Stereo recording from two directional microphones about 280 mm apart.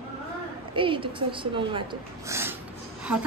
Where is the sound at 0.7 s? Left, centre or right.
Centre.